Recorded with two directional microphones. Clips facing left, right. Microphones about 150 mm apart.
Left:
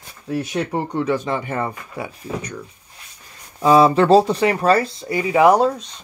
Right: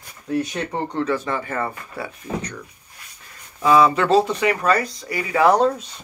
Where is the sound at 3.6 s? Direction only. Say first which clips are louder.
Left 3 dB; 30° left (ahead or behind); by 5.7 s 10° left (ahead or behind).